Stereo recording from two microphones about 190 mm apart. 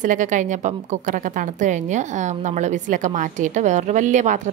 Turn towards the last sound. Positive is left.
turn(degrees=-40)  # may be behind; listen again after turning